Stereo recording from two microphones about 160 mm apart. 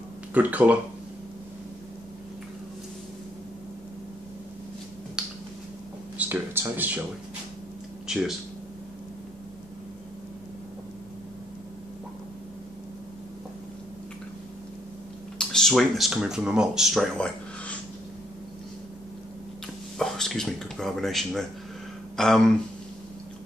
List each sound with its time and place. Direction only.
0.3 s speech: 10° right (ahead or behind)
5.2 s finger snapping: 5° right (ahead or behind)
6.1 s a sound: 10° right (ahead or behind)
8.1 s speech: 5° right (ahead or behind)
15.3 s speech: 5° left (ahead or behind)
20.0 s speech: 5° left (ahead or behind)